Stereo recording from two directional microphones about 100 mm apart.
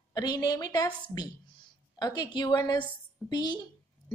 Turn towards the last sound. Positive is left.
turn(degrees=50)  # may be behind; listen again after turning